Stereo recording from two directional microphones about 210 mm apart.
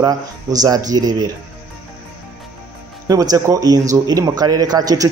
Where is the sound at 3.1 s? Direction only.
15° right (ahead or behind).